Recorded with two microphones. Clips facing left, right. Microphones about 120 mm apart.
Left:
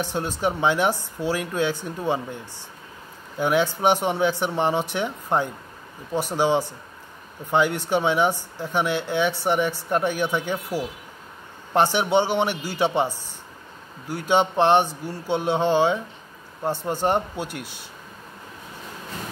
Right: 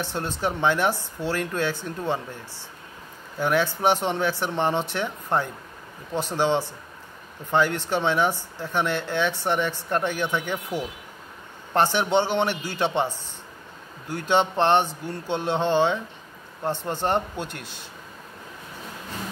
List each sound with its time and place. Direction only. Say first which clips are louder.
0.0 s speech: left 3 dB; 15° left (ahead or behind)
3.3 s speech: left 2 dB; 15° left (ahead or behind)